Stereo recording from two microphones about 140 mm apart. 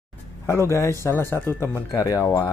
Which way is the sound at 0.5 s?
20° left (ahead or behind).